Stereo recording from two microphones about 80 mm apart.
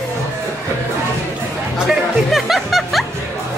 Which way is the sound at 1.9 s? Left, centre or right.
Centre.